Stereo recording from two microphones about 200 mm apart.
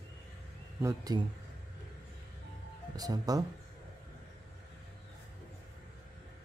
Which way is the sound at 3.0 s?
20° right (ahead or behind).